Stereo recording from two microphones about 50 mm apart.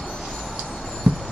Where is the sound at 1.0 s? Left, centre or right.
Right.